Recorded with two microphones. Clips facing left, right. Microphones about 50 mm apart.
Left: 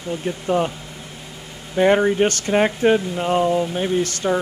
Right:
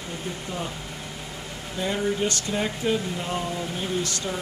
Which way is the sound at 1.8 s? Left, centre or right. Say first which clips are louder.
Left 10 dB; left.